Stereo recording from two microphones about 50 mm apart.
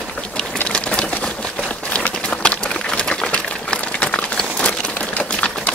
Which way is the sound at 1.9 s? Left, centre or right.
Left.